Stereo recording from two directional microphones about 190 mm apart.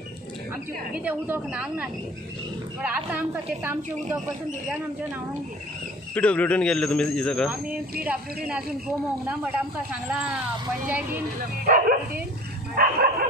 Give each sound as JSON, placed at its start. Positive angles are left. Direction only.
{"t": 0.9, "sound": "speech", "side_deg": -10}
{"t": 6.1, "sound": "a man's voice", "side_deg": 5}
{"t": 8.5, "sound": "speech", "side_deg": -5}
{"t": 10.9, "sound": "speech", "side_deg": -5}
{"t": 11.3, "sound": "speech", "side_deg": -45}
{"t": 12.7, "sound": "dog", "side_deg": -50}